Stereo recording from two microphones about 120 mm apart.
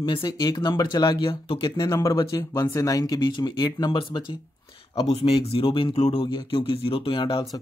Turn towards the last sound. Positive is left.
turn(degrees=40)  # may be behind; listen again after turning